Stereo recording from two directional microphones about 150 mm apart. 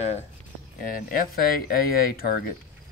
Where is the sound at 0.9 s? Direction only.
70° left (ahead or behind).